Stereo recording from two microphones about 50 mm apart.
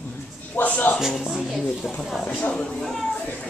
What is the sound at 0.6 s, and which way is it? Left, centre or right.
Speech, left.